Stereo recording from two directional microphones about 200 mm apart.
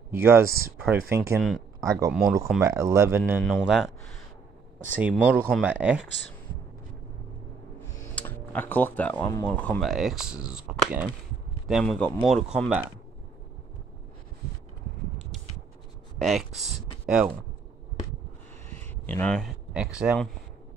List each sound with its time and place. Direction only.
0.1 s speech: 10° right (ahead or behind)
3.4 s speech: centre (ahead or behind)
8.1 s speech: 10° left (ahead or behind)
16.2 s speech: centre (ahead or behind)
19.0 s speech: 5° left (ahead or behind)